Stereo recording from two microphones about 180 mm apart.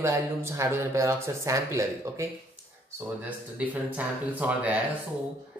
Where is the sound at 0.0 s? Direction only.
15° right (ahead or behind).